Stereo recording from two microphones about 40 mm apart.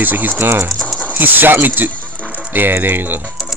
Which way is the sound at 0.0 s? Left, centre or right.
Right.